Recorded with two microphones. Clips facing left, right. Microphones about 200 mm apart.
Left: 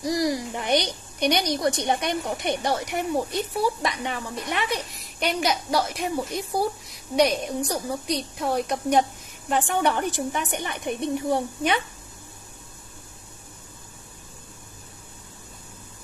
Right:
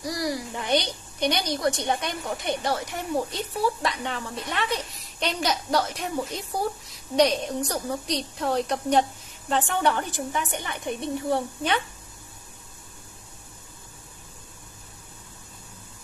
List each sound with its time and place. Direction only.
0.0 s a child's voice: 20° left (ahead or behind)